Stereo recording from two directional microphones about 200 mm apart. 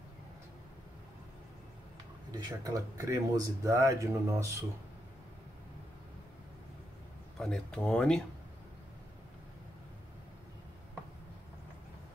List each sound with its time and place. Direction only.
2.3 s speech: 15° right (ahead or behind)
7.3 s speech: 5° left (ahead or behind)